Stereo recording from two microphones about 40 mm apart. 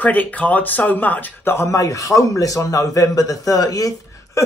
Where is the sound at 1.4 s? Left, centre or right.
Left.